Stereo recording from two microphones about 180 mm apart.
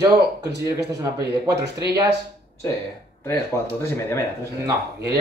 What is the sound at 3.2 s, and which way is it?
Speech, 15° left (ahead or behind).